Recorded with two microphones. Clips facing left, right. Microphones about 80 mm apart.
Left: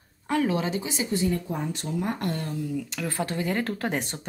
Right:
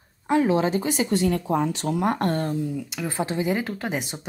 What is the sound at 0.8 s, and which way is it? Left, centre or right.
Speech, right.